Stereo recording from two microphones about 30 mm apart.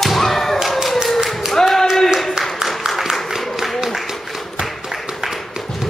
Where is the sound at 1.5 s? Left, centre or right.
Centre.